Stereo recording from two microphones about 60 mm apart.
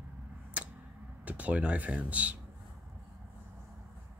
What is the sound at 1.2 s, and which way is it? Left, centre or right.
Speech, right.